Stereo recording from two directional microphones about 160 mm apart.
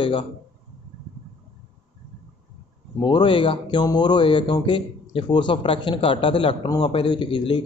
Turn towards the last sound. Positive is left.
turn(degrees=30)  # may be behind; listen again after turning